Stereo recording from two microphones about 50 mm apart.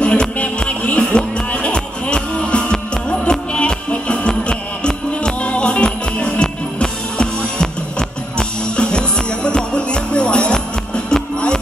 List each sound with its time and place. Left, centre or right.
0.0 s music: left